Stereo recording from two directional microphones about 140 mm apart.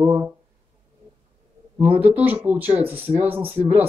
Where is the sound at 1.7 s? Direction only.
10° right (ahead or behind).